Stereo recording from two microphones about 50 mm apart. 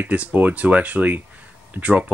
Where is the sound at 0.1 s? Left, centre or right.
Right.